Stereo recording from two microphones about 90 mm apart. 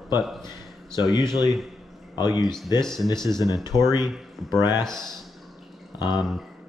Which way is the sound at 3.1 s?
55° left (ahead or behind).